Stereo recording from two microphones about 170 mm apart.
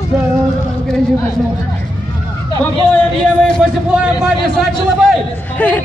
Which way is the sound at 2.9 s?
5° left (ahead or behind).